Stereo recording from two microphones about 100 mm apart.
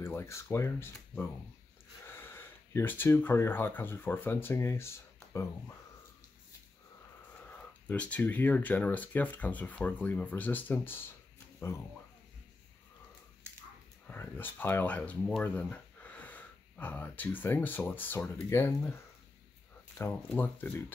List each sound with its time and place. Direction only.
0.0 s speech: 25° left (ahead or behind)
7.3 s speech: 15° left (ahead or behind)
14.0 s speech: 20° left (ahead or behind)
20.0 s speech: 15° left (ahead or behind)